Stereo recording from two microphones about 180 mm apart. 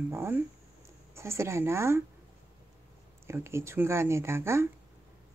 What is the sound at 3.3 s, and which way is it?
Speech, 15° right (ahead or behind).